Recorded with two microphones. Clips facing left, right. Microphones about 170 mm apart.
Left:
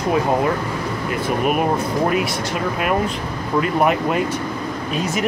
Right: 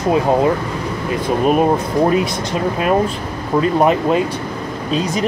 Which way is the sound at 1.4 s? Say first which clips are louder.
Right 5 dB; 30° right (ahead or behind).